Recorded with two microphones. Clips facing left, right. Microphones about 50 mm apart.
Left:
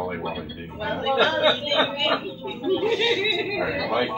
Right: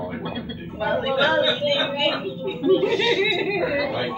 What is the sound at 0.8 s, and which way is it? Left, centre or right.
A man's voice, centre.